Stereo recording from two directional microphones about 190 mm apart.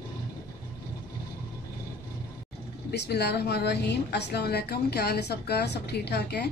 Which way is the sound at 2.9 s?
60° left (ahead or behind).